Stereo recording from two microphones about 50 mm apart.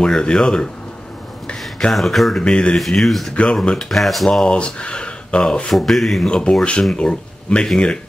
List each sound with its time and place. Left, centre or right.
0.0 s speech: centre
1.9 s speech: centre
2.4 s speech: centre
2.8 s speech: centre
4.3 s speech: centre
5.7 s speech: centre
6.2 s speech: centre